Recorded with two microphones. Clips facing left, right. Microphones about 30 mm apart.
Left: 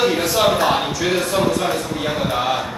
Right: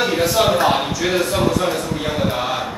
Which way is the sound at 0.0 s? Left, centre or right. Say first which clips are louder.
Even; centre.